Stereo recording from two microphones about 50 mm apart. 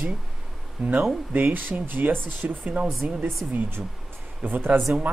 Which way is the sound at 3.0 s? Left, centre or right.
Right.